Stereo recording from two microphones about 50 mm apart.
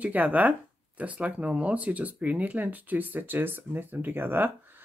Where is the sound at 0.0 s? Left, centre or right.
Right.